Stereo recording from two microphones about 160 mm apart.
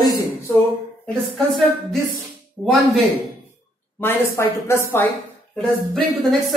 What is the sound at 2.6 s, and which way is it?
Speech, 15° right (ahead or behind).